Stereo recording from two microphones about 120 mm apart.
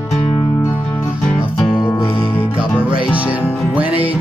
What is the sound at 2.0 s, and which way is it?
Music, 50° left (ahead or behind).